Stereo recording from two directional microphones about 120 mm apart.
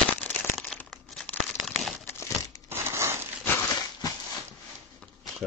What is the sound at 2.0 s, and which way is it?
Crumpling, 25° left (ahead or behind).